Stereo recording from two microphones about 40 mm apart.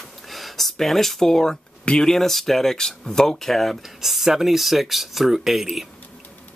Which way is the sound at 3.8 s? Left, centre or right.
Centre.